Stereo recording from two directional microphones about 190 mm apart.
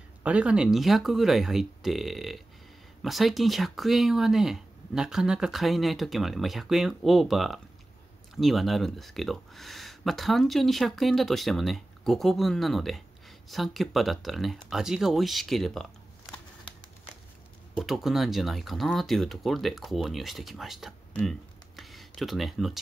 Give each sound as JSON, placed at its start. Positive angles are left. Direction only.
{"t": 0.2, "sound": "speech", "side_deg": -5}
{"t": 17.7, "sound": "speech", "side_deg": 0}